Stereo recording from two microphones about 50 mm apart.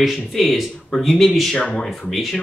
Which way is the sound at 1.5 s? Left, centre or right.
Left.